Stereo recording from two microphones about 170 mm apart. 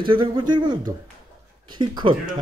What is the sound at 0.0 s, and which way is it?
A man's voice, 30° right (ahead or behind).